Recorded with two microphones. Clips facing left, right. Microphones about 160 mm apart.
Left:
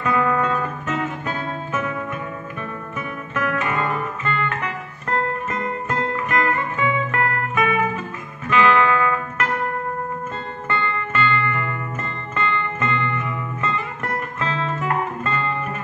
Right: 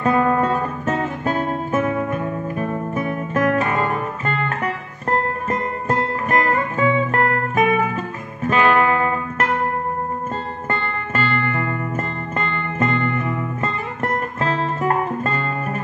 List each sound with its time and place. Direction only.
0.0 s music: 40° right (ahead or behind)
10.7 s music: 40° right (ahead or behind)